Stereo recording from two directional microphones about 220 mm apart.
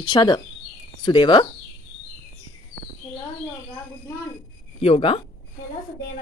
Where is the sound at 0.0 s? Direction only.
20° left (ahead or behind).